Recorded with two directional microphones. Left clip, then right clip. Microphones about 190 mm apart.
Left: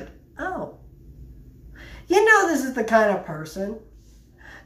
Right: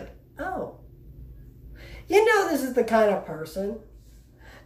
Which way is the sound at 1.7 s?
10° right (ahead or behind).